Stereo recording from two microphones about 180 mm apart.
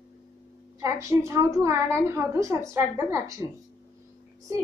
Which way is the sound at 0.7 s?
15° right (ahead or behind).